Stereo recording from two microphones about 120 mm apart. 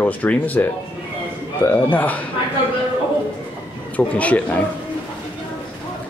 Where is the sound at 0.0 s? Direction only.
15° left (ahead or behind).